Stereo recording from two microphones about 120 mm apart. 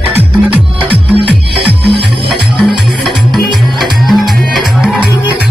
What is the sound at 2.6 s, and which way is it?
Music, centre (ahead or behind).